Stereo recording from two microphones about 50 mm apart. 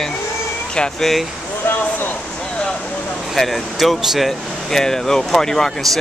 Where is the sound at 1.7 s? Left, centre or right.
Left.